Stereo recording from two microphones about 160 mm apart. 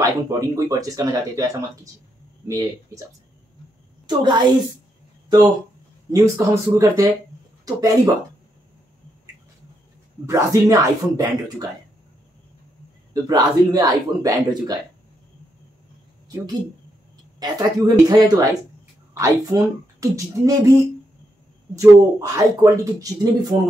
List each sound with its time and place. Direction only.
0.0 s a man's voice: 20° right (ahead or behind)
2.4 s a man's voice: 20° right (ahead or behind)
4.2 s a man's voice: 30° right (ahead or behind)
6.1 s a man's voice: 20° right (ahead or behind)
10.2 s a man's voice: 20° right (ahead or behind)
13.1 s a man's voice: 25° right (ahead or behind)
17.4 s a man's voice: 25° right (ahead or behind)
21.7 s a man's voice: 20° right (ahead or behind)
23.5 s a sound: 35° right (ahead or behind)